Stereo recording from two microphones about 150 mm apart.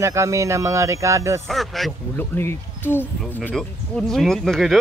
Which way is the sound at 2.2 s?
15° left (ahead or behind).